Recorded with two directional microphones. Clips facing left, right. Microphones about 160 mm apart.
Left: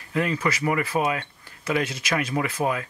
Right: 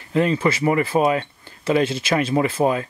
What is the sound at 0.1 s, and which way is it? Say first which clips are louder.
Speech: right 6 dB; 30° right (ahead or behind).